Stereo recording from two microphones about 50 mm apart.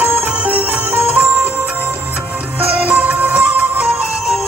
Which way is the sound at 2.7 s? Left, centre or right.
Right.